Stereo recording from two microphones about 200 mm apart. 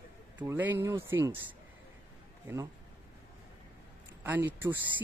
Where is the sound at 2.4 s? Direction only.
15° right (ahead or behind).